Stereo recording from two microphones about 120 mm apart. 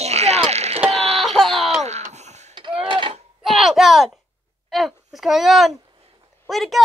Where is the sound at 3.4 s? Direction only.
Centre (ahead or behind).